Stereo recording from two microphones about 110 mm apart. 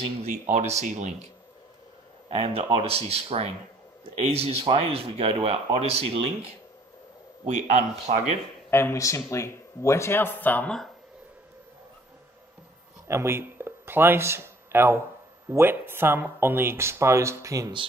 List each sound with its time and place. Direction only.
0.2 s speech: 90° right
2.2 s speech: 70° right (ahead or behind)
7.4 s speech: 90° right
8.6 s speech: 20° left (ahead or behind)
13.1 s speech: 20° right (ahead or behind)